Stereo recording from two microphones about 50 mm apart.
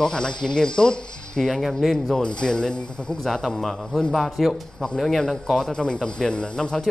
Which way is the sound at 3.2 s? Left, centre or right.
Centre.